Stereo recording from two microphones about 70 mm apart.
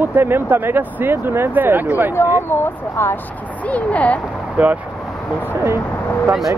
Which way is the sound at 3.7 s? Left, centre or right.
Left.